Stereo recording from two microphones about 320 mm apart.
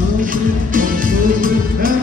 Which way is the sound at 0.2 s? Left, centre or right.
Right.